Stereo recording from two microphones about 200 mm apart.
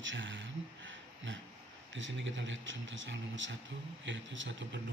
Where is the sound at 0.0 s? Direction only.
65° right (ahead or behind).